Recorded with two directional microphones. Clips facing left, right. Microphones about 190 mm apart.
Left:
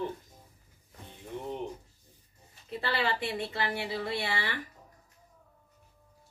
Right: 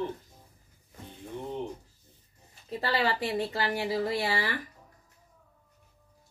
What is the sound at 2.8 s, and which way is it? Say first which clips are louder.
A woman's voice: right 3 dB; 40° right (ahead or behind).